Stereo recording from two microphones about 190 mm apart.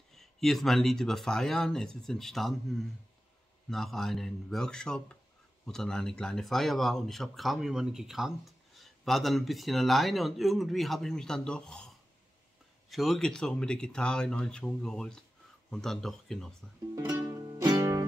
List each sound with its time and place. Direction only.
0.1 s speech: centre (ahead or behind)
12.9 s speech: centre (ahead or behind)
16.9 s music: 20° right (ahead or behind)